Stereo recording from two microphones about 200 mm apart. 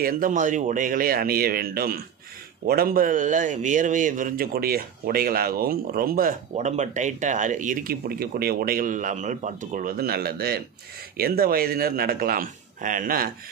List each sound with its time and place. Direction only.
0.0 s a man's voice: 45° right (ahead or behind)